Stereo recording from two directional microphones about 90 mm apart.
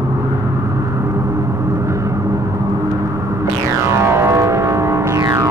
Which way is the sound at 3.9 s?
30° right (ahead or behind).